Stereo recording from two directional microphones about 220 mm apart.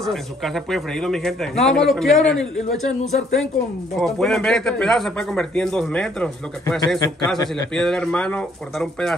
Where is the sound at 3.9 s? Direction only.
Centre (ahead or behind).